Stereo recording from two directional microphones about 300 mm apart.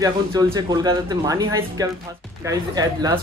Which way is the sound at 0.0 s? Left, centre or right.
Centre.